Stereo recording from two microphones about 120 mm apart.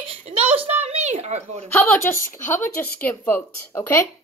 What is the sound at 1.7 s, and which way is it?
Speech, 15° left (ahead or behind).